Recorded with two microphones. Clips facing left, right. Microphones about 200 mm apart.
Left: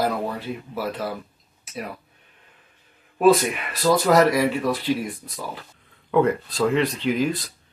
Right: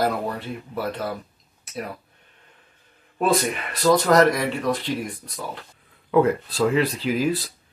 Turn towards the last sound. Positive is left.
turn(degrees=-5)  # may be behind; listen again after turning